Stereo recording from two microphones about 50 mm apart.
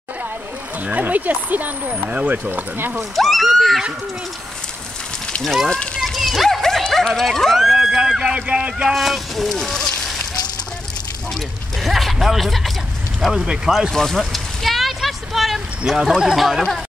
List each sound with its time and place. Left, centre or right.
0.8 s speech: right
3.0 s speech: centre
3.4 s neigh: centre
6.0 s dog: centre
7.6 s a sound: centre
8.5 s speech: right
8.8 s speech: centre
11.8 s speech: centre
13.9 s a sound: centre
15.8 s speech: centre